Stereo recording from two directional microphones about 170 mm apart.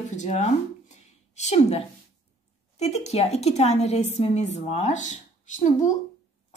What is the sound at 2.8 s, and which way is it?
A woman's voice, 40° left (ahead or behind).